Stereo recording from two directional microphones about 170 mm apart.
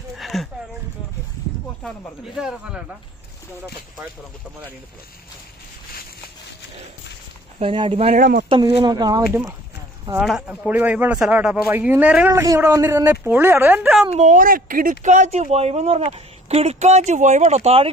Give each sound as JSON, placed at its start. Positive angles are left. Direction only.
{"t": 0.2, "sound": "a sound", "side_deg": 0}
{"t": 1.8, "sound": "a man's voice", "side_deg": 0}
{"t": 7.5, "sound": "speech", "side_deg": -30}
{"t": 8.2, "sound": "speech", "side_deg": -55}
{"t": 8.5, "sound": "speech", "side_deg": -30}
{"t": 9.3, "sound": "speech", "side_deg": -15}
{"t": 10.2, "sound": "speech", "side_deg": 0}
{"t": 14.1, "sound": "speech", "side_deg": -45}